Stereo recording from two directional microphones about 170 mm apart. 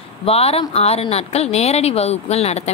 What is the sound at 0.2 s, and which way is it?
A woman's voice, 35° left (ahead or behind).